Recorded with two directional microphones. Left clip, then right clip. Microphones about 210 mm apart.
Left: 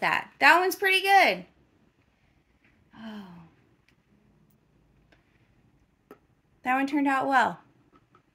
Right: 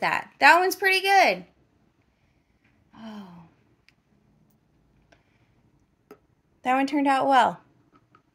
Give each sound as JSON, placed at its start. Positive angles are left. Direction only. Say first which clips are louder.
{"t": 0.0, "sound": "speech", "louder": "right 2 dB", "side_deg": -10}
{"t": 2.9, "sound": "gasp", "louder": "right 1 dB", "side_deg": -10}
{"t": 6.6, "sound": "a woman's voice", "louder": "right 3 dB", "side_deg": -20}